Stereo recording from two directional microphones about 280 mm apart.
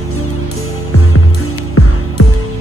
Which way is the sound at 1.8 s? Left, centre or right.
Left.